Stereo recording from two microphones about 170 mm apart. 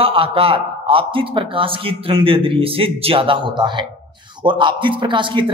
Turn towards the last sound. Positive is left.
turn(degrees=-30)  # may be behind; listen again after turning